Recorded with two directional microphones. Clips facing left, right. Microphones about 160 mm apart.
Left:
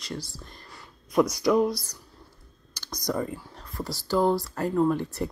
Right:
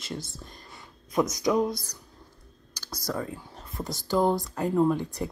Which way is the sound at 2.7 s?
10° right (ahead or behind).